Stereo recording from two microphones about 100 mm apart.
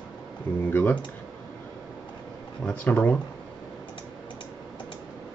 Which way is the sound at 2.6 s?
15° left (ahead or behind).